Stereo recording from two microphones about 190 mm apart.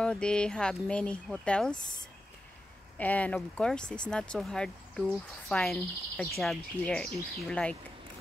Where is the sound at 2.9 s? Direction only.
10° left (ahead or behind).